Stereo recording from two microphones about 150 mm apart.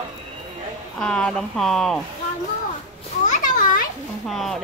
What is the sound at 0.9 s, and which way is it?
Speech, 5° left (ahead or behind).